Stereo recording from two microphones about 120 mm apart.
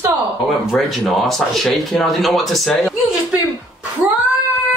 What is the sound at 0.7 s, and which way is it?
Speech, centre (ahead or behind).